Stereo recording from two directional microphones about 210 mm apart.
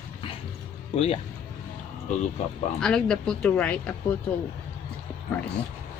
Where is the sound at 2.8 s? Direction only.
5° left (ahead or behind).